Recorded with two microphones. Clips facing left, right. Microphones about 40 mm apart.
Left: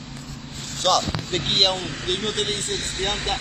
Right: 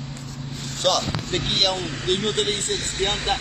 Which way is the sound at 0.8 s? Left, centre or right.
Centre.